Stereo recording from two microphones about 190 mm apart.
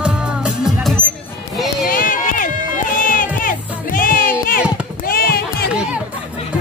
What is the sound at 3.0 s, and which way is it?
Music, 45° left (ahead or behind).